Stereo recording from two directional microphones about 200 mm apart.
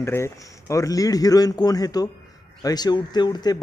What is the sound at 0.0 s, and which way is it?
Speech, 15° left (ahead or behind).